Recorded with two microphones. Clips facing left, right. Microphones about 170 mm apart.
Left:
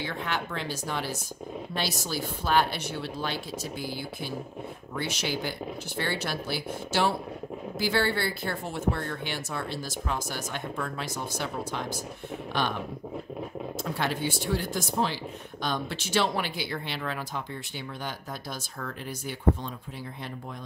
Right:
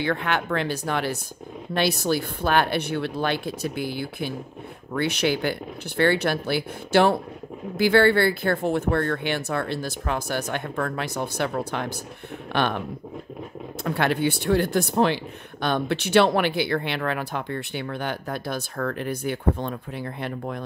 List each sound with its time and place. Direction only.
0.0 s speech: 65° right (ahead or behind)
13.8 s speech: 65° right (ahead or behind)